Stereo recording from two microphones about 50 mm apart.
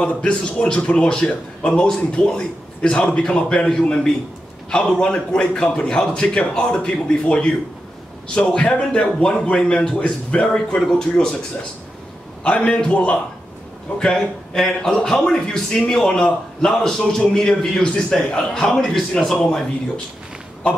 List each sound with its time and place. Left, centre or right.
0.0 s a man's voice: left
12.4 s a man's voice: left